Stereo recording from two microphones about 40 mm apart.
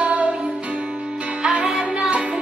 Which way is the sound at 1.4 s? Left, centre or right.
Right.